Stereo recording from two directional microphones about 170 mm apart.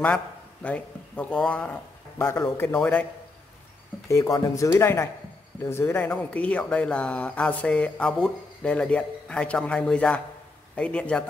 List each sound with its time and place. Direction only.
0.0 s speech: 10° left (ahead or behind)
4.1 s speech: 20° left (ahead or behind)